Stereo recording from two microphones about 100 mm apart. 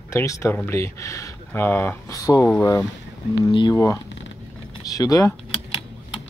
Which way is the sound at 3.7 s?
30° left (ahead or behind).